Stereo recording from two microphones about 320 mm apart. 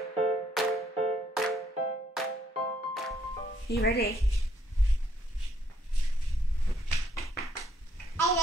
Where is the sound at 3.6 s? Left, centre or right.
Left.